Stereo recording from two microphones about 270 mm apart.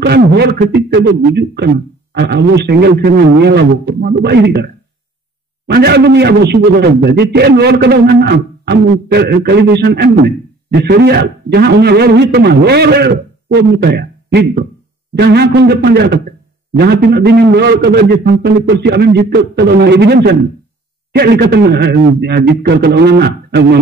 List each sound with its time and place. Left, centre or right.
0.0 s a man's voice: right
5.7 s a man's voice: right